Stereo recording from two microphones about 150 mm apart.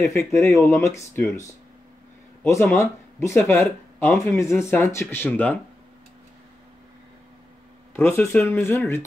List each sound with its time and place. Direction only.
0.1 s speech: 20° left (ahead or behind)
2.4 s speech: 20° left (ahead or behind)
7.9 s speech: 15° left (ahead or behind)